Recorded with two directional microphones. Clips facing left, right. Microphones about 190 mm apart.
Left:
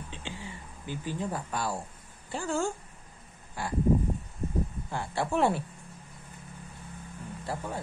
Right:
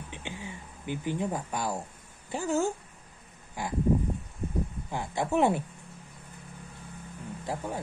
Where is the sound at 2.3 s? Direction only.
15° right (ahead or behind).